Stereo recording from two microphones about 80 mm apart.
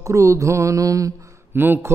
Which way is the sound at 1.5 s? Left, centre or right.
Right.